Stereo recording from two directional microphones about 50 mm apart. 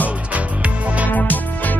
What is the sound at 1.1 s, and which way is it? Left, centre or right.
Music, left.